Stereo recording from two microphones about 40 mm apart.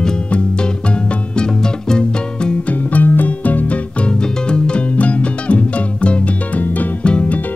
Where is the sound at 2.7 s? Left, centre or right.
Left.